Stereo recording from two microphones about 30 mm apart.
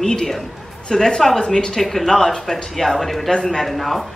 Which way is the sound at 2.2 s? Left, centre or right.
Centre.